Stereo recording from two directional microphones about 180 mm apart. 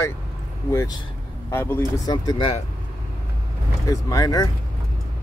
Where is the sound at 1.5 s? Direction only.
15° left (ahead or behind).